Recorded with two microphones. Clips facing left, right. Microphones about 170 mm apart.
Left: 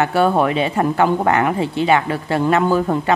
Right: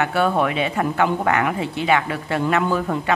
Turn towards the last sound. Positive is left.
turn(degrees=35)  # may be behind; listen again after turning